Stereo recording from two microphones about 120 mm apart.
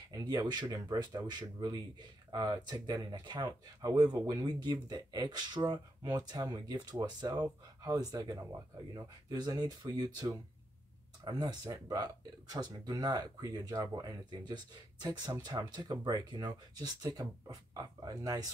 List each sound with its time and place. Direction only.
0.1 s speech: 30° right (ahead or behind)